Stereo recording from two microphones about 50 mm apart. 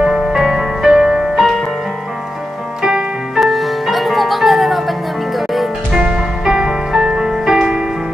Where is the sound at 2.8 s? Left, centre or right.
Centre.